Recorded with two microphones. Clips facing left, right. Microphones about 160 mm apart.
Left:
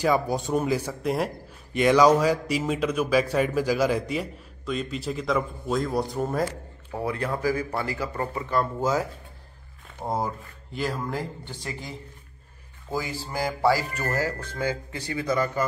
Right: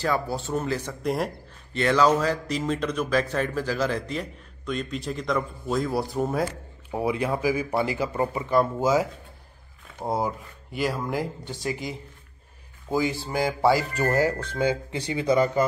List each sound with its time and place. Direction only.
0.0 s speech: 15° left (ahead or behind)
1.7 s speech: 15° left (ahead or behind); by 6.4 s 5° right (ahead or behind)
6.9 s a man's voice: 15° right (ahead or behind)
10.0 s a man's voice: 10° right (ahead or behind)
12.9 s speech: 20° right (ahead or behind)